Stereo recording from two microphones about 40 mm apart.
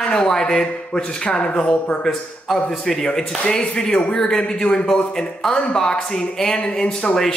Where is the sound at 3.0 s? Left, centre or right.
Left.